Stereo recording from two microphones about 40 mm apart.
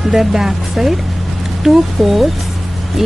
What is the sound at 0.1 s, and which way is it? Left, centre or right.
Speech, centre.